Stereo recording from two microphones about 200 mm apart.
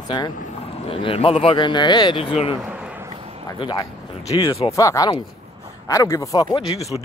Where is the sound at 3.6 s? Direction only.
15° left (ahead or behind).